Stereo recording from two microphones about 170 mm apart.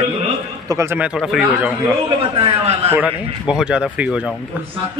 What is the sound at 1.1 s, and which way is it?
Speech, centre (ahead or behind).